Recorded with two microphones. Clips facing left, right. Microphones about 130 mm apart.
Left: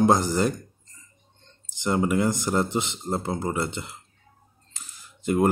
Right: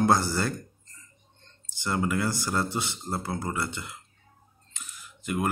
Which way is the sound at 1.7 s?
20° left (ahead or behind).